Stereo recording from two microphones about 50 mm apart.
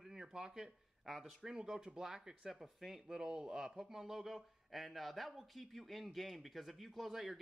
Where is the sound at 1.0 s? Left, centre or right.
Centre.